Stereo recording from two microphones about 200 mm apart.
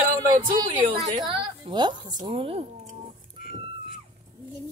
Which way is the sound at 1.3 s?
25° right (ahead or behind).